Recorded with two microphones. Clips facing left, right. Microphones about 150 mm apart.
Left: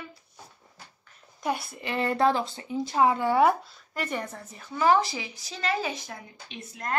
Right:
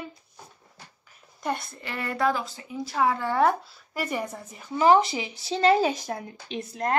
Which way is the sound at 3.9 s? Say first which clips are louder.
Right 2 dB; 10° right (ahead or behind).